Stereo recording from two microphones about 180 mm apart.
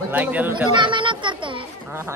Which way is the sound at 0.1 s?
10° right (ahead or behind).